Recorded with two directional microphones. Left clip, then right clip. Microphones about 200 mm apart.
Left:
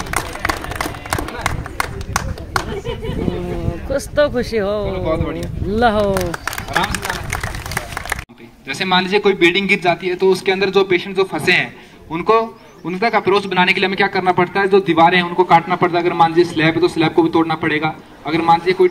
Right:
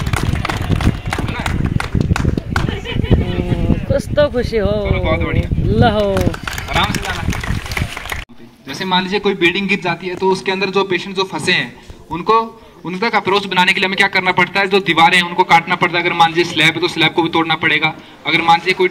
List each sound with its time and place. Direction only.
0.1 s run: 25° left (ahead or behind)
3.9 s speech: 10° right (ahead or behind)
4.9 s speech: 20° left (ahead or behind)
5.8 s speech: 5° right (ahead or behind)
6.1 s a sound: 25° left (ahead or behind)
8.8 s a man's voice: 15° left (ahead or behind)